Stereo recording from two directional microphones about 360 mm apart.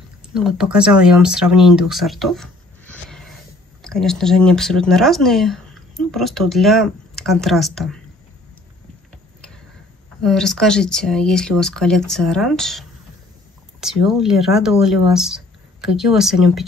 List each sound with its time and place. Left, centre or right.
0.2 s speech: centre
10.2 s speech: centre